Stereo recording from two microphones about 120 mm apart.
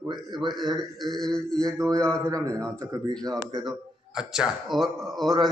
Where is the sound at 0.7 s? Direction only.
Centre (ahead or behind).